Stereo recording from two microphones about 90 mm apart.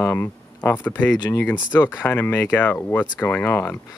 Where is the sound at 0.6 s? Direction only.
20° left (ahead or behind).